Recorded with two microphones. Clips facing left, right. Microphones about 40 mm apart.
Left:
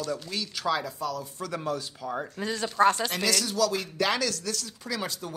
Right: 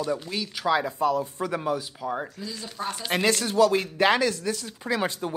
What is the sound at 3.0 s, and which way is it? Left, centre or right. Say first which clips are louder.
Speech: right 4 dB; right.